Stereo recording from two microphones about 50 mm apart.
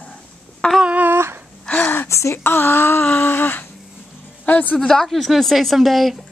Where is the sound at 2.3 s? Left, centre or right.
Left.